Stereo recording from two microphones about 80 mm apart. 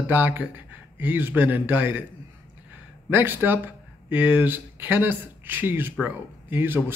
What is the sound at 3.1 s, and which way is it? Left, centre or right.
Speech, right.